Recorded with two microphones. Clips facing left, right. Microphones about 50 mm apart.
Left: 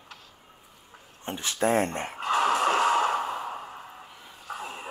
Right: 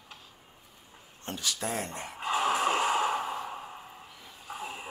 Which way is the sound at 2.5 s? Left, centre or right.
Left.